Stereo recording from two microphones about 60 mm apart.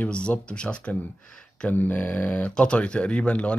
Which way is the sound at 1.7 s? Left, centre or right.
Left.